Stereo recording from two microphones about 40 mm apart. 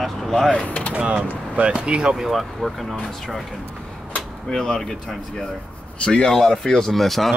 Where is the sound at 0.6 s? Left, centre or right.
Left.